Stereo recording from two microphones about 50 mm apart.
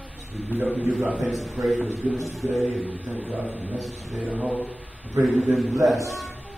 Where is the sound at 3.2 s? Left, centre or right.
Right.